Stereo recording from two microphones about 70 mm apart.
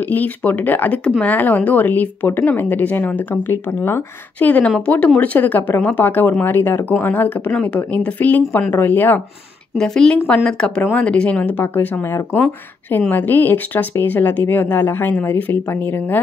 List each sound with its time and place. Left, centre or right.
0.0 s a woman's voice: left
4.4 s a woman's voice: centre
9.8 s a woman's voice: centre; by 16.2 s left